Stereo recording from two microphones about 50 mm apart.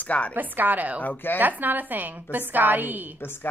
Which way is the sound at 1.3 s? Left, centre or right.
Right.